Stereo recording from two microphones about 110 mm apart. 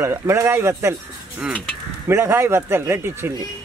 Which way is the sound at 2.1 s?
25° right (ahead or behind).